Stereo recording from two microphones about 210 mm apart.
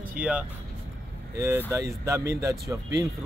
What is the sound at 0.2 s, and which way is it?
Speech, 5° right (ahead or behind).